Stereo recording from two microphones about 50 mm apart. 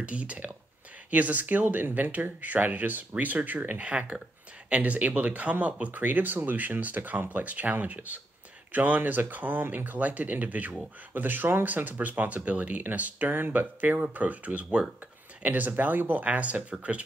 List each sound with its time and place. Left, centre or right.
0.0 s speech: right
3.8 s speech: right
13.9 s speech: right
15.4 s speech: right
16.3 s speech: right